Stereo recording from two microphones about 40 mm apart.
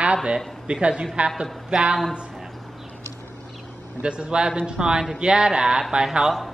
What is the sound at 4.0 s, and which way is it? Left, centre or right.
Speech, right.